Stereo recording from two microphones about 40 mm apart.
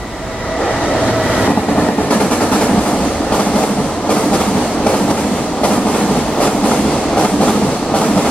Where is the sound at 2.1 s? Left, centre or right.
Left.